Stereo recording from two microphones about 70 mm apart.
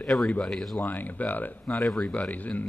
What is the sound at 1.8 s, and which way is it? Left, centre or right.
Speech, centre.